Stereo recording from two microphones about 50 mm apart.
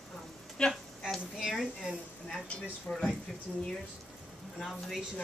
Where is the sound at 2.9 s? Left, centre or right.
Centre.